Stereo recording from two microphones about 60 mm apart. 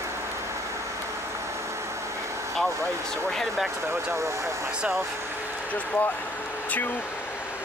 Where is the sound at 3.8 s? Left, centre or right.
Right.